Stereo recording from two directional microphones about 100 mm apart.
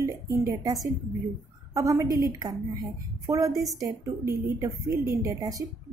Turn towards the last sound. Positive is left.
turn(degrees=-35)  # may be behind; listen again after turning